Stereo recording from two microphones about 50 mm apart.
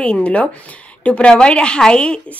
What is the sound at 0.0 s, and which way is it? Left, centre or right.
A woman's voice, left.